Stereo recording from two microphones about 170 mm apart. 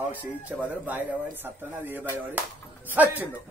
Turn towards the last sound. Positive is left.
turn(degrees=-10)  # may be behind; listen again after turning